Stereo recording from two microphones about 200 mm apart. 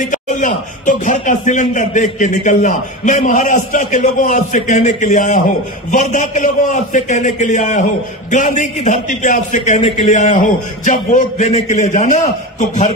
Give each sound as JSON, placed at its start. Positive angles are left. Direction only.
{"t": 0.1, "sound": "speech", "side_deg": 40}